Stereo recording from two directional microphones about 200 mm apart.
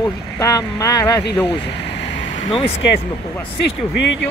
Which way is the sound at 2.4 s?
30° left (ahead or behind).